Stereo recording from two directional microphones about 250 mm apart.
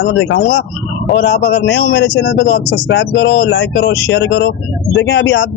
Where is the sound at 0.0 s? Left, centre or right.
Left.